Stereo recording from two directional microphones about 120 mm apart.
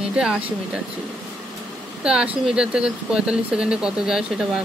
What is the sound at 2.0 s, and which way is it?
Speech, 5° right (ahead or behind).